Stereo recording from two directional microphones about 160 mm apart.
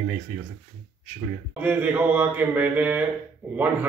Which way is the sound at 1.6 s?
10° right (ahead or behind).